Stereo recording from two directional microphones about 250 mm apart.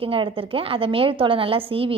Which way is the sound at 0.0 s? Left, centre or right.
Right.